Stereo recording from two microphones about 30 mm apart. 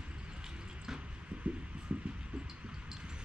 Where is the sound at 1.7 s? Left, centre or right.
Right.